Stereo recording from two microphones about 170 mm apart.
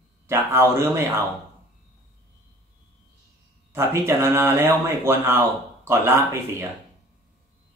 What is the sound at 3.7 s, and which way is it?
Speech, 15° right (ahead or behind).